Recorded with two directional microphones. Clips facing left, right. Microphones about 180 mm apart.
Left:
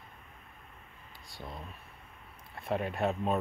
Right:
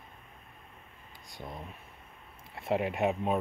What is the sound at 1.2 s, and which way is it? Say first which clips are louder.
Speech: right 2 dB; 20° right (ahead or behind).